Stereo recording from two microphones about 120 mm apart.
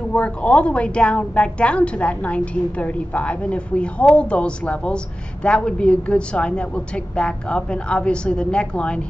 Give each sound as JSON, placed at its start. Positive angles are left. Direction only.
{"t": 0.1, "sound": "a woman's voice", "side_deg": 10}